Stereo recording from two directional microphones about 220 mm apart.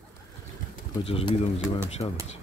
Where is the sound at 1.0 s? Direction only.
25° left (ahead or behind).